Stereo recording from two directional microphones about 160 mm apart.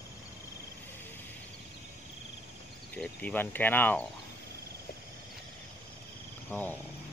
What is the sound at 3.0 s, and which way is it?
Speech, 10° left (ahead or behind).